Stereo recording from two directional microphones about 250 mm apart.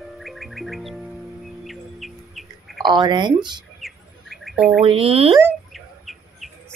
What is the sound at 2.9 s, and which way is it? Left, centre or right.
Speech, centre.